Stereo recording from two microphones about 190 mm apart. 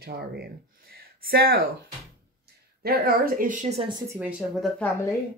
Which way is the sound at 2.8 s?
55° right (ahead or behind).